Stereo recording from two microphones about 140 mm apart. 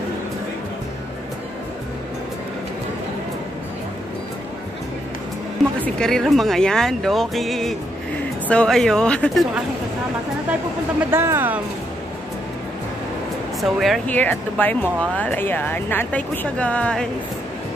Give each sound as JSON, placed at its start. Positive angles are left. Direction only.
{"t": 5.6, "sound": "speech", "side_deg": 0}
{"t": 11.1, "sound": "speech", "side_deg": -15}
{"t": 13.6, "sound": "speech", "side_deg": 0}
{"t": 14.0, "sound": "speech", "side_deg": 10}